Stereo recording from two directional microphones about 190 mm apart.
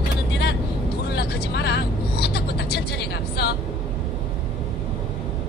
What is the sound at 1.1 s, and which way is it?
Vehicle, 60° left (ahead or behind).